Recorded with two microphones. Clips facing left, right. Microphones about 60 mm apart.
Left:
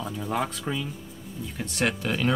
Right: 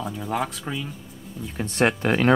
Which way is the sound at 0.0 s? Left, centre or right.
Centre.